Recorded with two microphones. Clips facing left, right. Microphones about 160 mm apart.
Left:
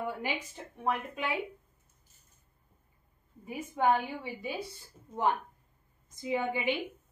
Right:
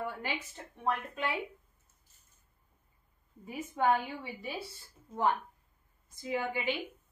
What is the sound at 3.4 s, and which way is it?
A woman's voice, 10° left (ahead or behind).